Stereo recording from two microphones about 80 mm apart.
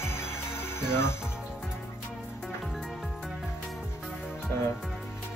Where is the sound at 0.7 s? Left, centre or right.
Left.